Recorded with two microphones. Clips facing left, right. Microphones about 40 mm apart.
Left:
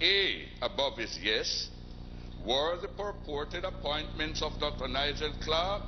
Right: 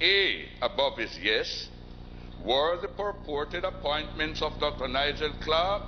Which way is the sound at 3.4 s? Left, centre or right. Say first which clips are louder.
Right 5 dB; centre.